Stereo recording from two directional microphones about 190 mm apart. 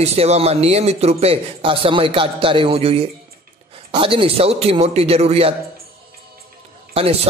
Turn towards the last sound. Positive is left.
turn(degrees=-30)  # may be behind; listen again after turning